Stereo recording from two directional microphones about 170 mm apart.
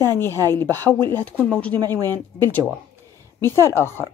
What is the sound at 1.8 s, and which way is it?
Speech, 25° right (ahead or behind).